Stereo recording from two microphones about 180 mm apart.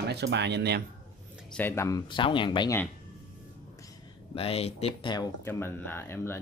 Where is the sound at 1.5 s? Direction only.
10° left (ahead or behind); by 2.7 s 25° left (ahead or behind).